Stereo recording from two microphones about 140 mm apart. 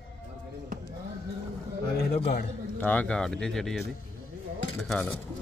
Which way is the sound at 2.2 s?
55° left (ahead or behind).